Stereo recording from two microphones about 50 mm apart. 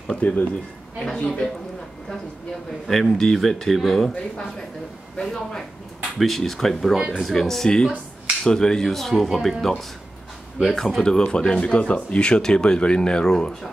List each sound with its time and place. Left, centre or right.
0.2 s speech: left
0.9 s speech: centre
2.9 s speech: centre
5.1 s speech: centre
11.0 s speech: centre